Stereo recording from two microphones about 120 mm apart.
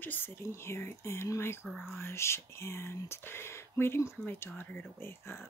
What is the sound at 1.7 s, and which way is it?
Speech, centre (ahead or behind).